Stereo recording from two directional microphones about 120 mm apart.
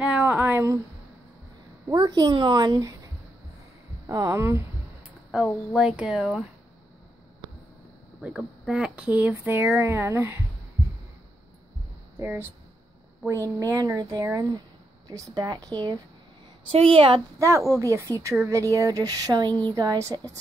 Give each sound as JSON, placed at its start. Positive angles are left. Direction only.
{"t": 0.0, "sound": "a sound", "side_deg": -10}
{"t": 1.9, "sound": "speech", "side_deg": -35}
{"t": 4.3, "sound": "speech", "side_deg": -25}
{"t": 5.8, "sound": "speech", "side_deg": -5}
{"t": 8.2, "sound": "speech", "side_deg": -5}
{"t": 12.2, "sound": "speech", "side_deg": -20}
{"t": 16.7, "sound": "a woman's voice", "side_deg": -50}
{"t": 17.4, "sound": "speech", "side_deg": -25}